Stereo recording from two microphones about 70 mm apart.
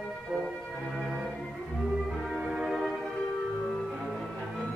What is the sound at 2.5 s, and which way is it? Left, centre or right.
Music, centre.